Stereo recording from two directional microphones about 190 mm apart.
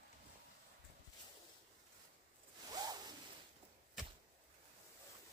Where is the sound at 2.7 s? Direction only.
20° right (ahead or behind).